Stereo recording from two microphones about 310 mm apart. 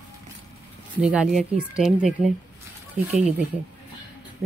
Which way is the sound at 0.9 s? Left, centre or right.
Centre.